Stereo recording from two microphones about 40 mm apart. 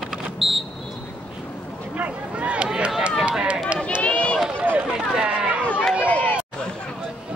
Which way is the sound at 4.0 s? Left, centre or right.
Left.